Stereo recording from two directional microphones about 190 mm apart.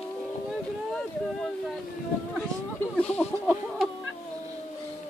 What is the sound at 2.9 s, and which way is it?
Chicken, 5° left (ahead or behind).